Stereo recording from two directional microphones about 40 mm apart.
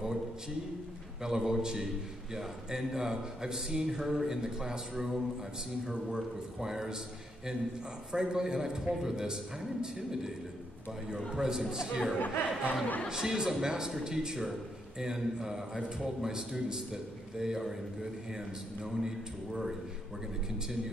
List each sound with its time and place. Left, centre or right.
1.2 s speech: centre
8.1 s speech: centre
11.1 s a man's voice: centre
11.4 s speech: centre
12.2 s speech: left
13.1 s speech: centre